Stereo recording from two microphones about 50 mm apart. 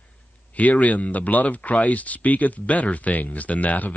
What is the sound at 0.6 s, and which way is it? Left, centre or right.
Speech, left.